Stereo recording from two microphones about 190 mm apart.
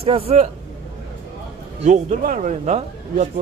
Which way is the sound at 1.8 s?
40° right (ahead or behind).